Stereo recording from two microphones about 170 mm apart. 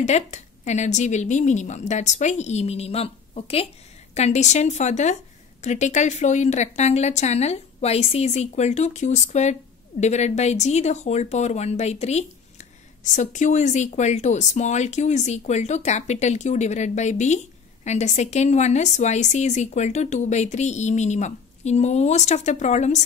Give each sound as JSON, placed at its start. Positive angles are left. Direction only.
{"t": 0.0, "sound": "a woman's voice", "side_deg": 45}